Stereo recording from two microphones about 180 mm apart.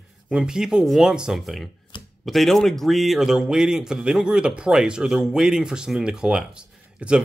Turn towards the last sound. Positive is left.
turn(degrees=-5)  # may be behind; listen again after turning